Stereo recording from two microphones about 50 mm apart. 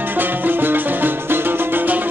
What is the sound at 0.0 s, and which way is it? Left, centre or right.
Music, right.